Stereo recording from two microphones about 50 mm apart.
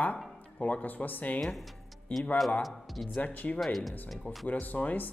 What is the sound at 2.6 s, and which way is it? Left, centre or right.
Speech, centre.